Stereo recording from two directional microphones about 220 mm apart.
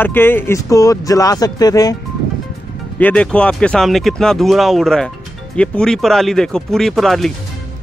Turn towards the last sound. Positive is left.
turn(degrees=0)  # may be behind; listen again after turning